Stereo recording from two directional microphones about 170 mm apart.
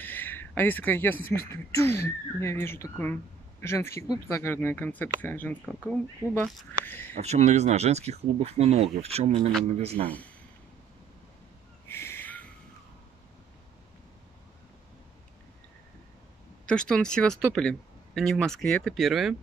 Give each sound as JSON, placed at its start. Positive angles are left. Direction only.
{"t": 0.0, "sound": "a sound", "side_deg": 10}
{"t": 1.5, "sound": "speech", "side_deg": 20}
{"t": 7.2, "sound": "speech", "side_deg": -40}
{"t": 10.0, "sound": "speech", "side_deg": 10}
{"t": 11.9, "sound": "a sound", "side_deg": 15}
{"t": 16.6, "sound": "speech", "side_deg": 5}